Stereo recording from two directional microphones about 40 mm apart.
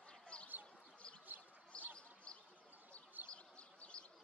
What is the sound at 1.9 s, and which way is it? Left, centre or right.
Bird, left.